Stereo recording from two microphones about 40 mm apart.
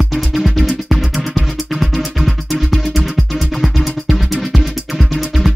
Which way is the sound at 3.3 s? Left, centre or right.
Centre.